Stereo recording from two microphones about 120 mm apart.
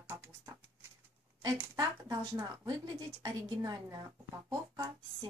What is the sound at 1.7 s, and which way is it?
A woman's voice, 30° right (ahead or behind).